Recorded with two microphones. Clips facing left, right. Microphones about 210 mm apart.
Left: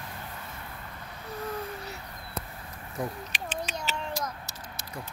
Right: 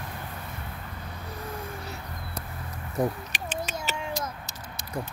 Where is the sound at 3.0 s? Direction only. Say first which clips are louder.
Right 6 dB; 45° right (ahead or behind).